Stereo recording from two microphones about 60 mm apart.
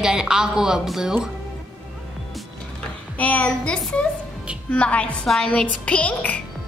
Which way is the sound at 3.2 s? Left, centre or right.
Left.